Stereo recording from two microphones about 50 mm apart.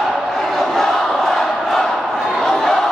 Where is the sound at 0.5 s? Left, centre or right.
Centre.